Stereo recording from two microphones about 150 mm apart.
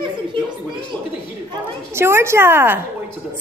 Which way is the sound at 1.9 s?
15° right (ahead or behind).